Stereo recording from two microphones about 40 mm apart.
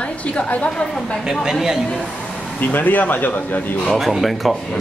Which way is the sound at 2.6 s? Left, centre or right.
Left.